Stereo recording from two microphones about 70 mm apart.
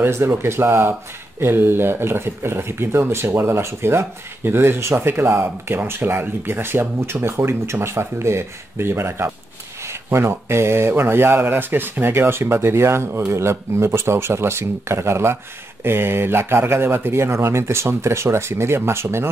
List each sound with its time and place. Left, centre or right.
0.0 s speech: right